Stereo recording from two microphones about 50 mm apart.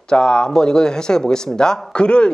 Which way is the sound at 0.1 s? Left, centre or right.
Centre.